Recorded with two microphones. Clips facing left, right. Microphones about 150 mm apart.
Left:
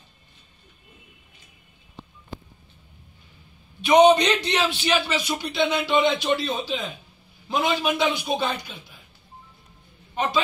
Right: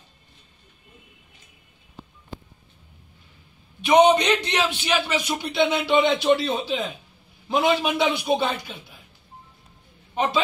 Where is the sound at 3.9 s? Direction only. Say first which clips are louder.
Left 1 dB; 5° right (ahead or behind).